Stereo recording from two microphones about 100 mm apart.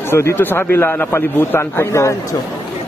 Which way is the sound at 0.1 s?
25° left (ahead or behind).